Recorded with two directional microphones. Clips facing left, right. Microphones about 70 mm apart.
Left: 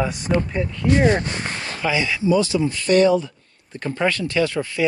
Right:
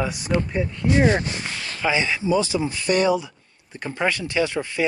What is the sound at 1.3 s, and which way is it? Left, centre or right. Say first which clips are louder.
Speech: left 3 dB; left.